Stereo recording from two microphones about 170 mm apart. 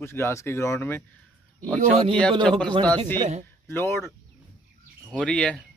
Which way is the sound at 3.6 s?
15° left (ahead or behind).